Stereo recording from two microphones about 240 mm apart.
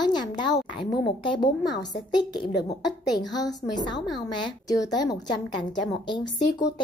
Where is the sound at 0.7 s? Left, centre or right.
Left.